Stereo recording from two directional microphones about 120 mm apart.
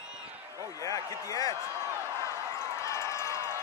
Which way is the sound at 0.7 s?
30° left (ahead or behind).